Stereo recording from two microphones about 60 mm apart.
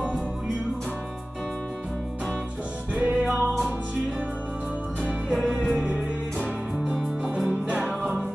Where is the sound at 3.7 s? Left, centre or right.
Right.